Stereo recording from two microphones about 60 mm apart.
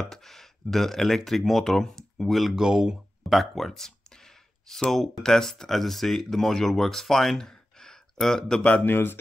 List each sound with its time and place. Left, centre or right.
0.0 s speech: centre
3.3 s a sound: centre
4.9 s speech: centre
8.8 s speech: left